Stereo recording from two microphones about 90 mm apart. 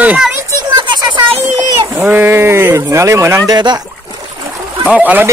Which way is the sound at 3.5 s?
55° right (ahead or behind).